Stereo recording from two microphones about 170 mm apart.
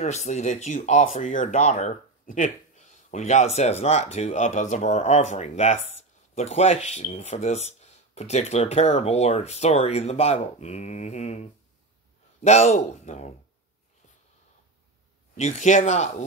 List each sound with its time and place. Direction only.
0.0 s speech: 40° left (ahead or behind)
15.3 s speech: 40° left (ahead or behind)